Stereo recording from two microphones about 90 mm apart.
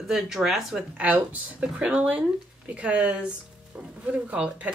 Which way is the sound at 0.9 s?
15° right (ahead or behind).